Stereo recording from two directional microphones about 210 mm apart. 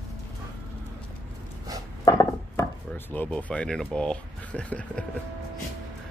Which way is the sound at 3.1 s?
5° left (ahead or behind).